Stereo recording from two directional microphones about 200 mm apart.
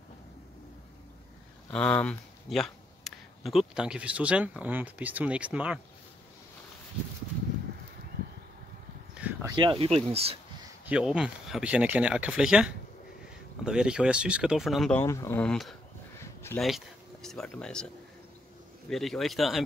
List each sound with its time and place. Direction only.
1.7 s speech: 5° left (ahead or behind)
9.1 s a sound: 5° right (ahead or behind)
9.5 s speech: 25° right (ahead or behind)
10.9 s speech: 5° right (ahead or behind)